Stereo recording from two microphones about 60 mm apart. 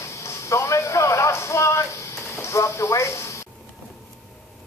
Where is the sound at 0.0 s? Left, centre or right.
Left.